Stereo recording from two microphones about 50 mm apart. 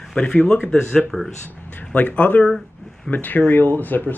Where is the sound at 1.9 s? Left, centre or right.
Left.